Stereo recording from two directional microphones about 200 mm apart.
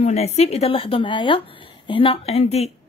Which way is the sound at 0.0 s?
30° left (ahead or behind).